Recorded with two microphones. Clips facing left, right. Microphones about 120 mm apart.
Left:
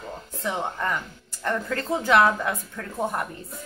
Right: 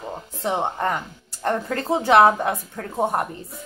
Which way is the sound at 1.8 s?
25° right (ahead or behind).